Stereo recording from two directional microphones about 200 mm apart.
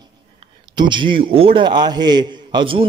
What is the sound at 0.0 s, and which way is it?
A man's voice, 20° right (ahead or behind).